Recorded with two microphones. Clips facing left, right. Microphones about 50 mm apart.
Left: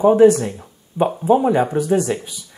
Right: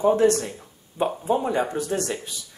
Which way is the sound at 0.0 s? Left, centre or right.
Centre.